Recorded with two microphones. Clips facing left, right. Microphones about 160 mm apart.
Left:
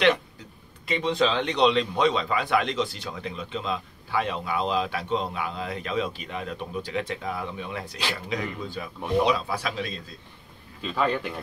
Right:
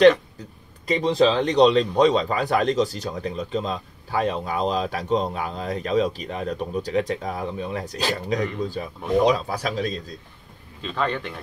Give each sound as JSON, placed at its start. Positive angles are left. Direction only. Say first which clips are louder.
{"t": 0.8, "sound": "a man's voice", "louder": "right 5 dB", "side_deg": -35}
{"t": 10.8, "sound": "a man's voice", "louder": "even", "side_deg": 5}